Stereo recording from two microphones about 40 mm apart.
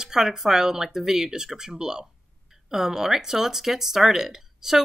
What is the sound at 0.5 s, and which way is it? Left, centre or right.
Speech, centre.